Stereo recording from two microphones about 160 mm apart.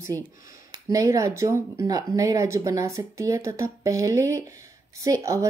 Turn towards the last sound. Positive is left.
turn(degrees=-20)  # may be behind; listen again after turning